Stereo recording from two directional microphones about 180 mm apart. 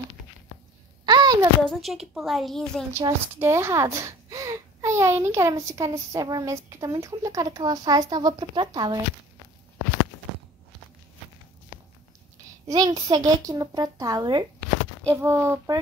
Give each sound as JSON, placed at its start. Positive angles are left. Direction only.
{"t": 1.0, "sound": "a sound", "side_deg": -25}
{"t": 1.7, "sound": "a woman's voice", "side_deg": 0}
{"t": 2.9, "sound": "speech", "side_deg": -15}
{"t": 12.6, "sound": "a child's voice", "side_deg": -20}